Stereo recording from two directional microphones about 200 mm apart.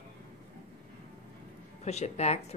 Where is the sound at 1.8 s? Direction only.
35° left (ahead or behind).